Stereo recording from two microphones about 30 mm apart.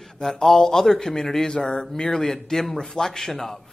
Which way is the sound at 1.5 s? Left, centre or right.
Left.